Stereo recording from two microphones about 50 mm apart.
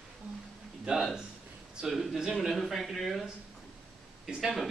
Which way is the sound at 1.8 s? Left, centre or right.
Centre.